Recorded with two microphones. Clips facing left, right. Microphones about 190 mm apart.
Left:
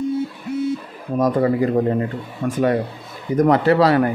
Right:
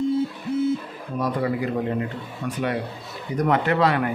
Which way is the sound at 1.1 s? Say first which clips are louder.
Left 7 dB; 45° left (ahead or behind).